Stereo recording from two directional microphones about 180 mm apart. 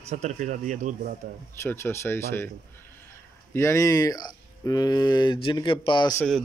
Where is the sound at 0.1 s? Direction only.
40° right (ahead or behind).